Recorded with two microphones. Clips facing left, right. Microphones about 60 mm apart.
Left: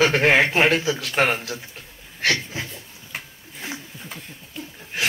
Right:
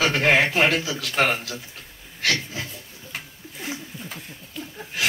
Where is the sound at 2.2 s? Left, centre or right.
Left.